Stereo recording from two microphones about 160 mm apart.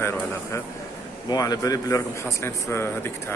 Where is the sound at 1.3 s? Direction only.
25° left (ahead or behind).